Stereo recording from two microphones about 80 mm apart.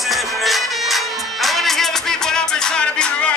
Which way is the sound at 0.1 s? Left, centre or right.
Centre.